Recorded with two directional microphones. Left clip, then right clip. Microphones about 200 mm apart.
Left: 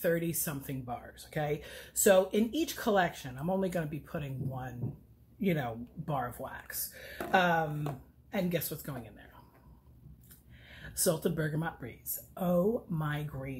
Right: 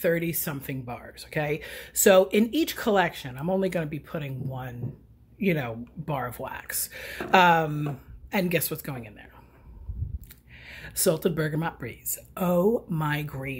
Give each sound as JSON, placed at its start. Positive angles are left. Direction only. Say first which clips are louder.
{"t": 0.0, "sound": "speech", "louder": "right 6 dB", "side_deg": -25}
{"t": 10.6, "sound": "speech", "louder": "right 7 dB", "side_deg": -30}